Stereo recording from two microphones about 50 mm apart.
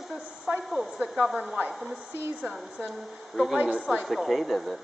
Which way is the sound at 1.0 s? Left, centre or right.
Centre.